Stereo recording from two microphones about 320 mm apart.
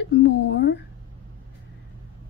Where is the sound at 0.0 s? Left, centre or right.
Left.